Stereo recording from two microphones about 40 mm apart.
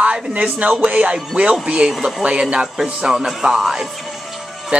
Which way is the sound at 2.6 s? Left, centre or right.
Centre.